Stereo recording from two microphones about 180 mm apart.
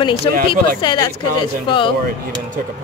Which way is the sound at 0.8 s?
25° left (ahead or behind).